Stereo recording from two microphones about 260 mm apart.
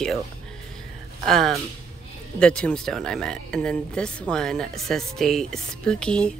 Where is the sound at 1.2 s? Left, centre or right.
Centre.